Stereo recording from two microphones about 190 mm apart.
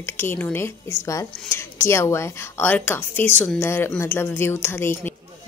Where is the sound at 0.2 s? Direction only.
10° left (ahead or behind).